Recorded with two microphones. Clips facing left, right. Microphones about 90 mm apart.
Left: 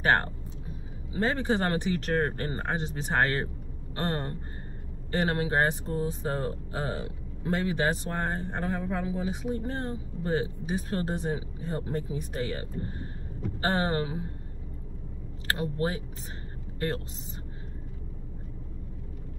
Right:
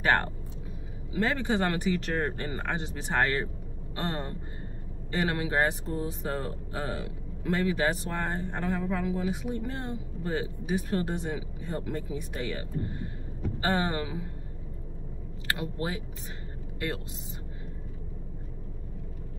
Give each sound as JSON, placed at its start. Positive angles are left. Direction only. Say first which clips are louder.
{"t": 1.1, "sound": "speech", "louder": "left 1 dB", "side_deg": 35}
{"t": 5.1, "sound": "speech", "louder": "left 1 dB", "side_deg": 35}
{"t": 15.4, "sound": "speech", "louder": "left 3 dB", "side_deg": 35}